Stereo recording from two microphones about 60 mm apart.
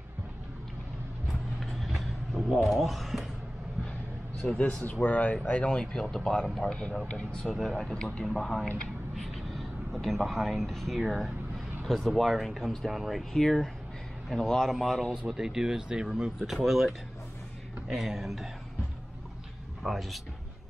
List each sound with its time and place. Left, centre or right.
1.2 s vehicle: centre
4.4 s speech: centre
7.5 s speech: centre
19.8 s speech: centre